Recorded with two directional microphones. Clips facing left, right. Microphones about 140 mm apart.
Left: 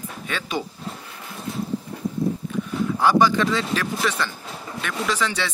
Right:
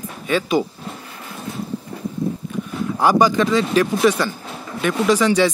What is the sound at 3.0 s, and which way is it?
Speech, 15° right (ahead or behind).